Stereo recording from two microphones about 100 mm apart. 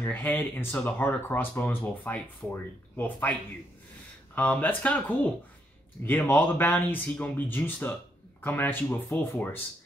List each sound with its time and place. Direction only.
0.0 s speech: 20° left (ahead or behind)
4.4 s speech: 15° left (ahead or behind)